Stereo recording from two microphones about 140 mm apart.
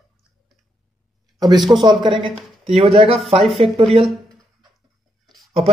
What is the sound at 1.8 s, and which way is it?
Speech, 35° right (ahead or behind).